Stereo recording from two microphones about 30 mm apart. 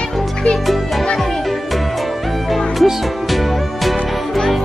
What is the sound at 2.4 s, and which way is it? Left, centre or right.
Music, centre.